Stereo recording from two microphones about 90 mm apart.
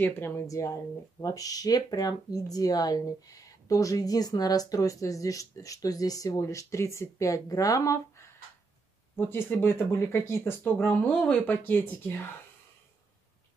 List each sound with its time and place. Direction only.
0.5 s speech: 35° left (ahead or behind)
9.1 s speech: 25° left (ahead or behind)
11.5 s speech: 25° left (ahead or behind)